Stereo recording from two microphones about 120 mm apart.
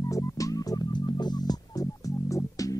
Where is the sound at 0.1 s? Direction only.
30° left (ahead or behind).